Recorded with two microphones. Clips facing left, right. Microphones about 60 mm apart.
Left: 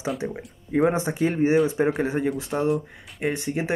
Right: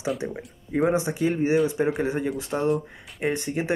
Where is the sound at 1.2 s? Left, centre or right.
Centre.